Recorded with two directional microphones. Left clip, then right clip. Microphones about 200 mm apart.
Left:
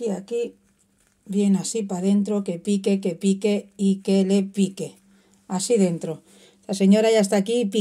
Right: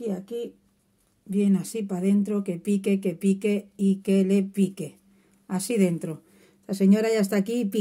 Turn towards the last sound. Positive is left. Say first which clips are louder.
# left 5 dB
turn(degrees=-35)  # may be behind; listen again after turning